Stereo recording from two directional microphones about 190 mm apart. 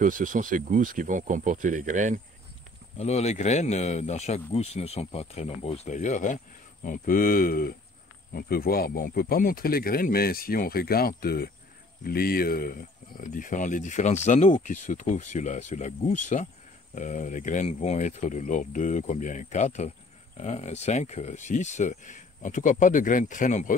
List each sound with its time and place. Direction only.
0.0 s speech: 45° right (ahead or behind)
3.0 s speech: 35° left (ahead or behind)